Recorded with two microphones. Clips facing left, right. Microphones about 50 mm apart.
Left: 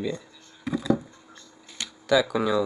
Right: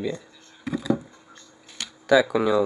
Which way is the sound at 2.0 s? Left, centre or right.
Centre.